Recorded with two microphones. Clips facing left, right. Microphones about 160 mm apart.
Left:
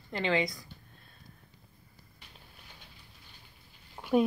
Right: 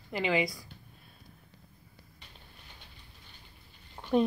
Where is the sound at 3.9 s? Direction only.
5° left (ahead or behind).